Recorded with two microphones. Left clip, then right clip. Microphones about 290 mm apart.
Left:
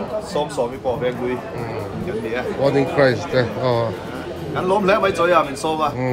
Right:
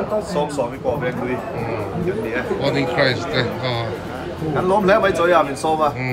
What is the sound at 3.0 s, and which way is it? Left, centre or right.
Speech, centre.